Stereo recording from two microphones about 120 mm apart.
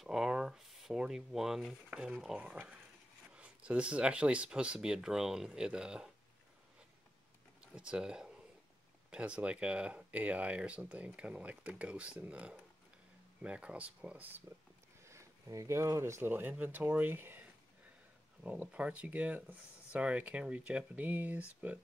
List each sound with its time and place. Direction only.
0.0 s speech: 5° right (ahead or behind)
7.7 s speech: 10° right (ahead or behind)
15.0 s speech: 25° right (ahead or behind)